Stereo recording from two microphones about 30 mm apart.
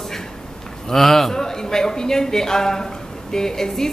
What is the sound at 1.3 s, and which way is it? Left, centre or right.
A man's voice, centre.